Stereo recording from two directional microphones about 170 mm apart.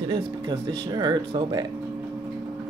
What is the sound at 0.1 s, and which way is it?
Speech, 25° right (ahead or behind).